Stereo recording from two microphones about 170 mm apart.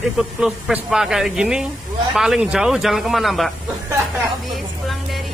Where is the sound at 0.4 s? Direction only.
5° right (ahead or behind).